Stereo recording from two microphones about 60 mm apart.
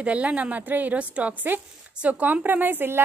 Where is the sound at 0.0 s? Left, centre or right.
Right.